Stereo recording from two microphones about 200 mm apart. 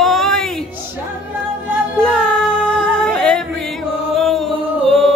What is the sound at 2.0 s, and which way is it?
Music, 5° left (ahead or behind).